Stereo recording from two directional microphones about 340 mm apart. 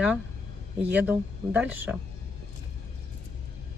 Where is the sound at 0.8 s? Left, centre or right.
Centre.